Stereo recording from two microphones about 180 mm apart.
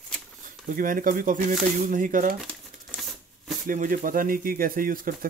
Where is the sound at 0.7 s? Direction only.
50° right (ahead or behind).